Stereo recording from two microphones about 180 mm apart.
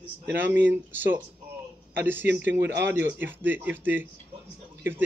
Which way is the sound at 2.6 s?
75° right (ahead or behind).